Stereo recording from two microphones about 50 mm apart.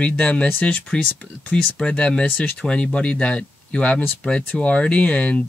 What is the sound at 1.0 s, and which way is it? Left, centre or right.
Speech, left.